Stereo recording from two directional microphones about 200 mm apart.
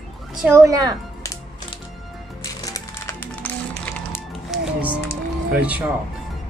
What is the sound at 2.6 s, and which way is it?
Music, 15° left (ahead or behind).